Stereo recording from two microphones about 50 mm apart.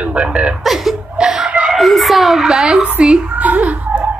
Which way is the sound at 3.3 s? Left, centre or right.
Right.